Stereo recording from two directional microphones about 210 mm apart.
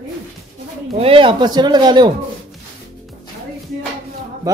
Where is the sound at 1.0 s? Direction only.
25° right (ahead or behind).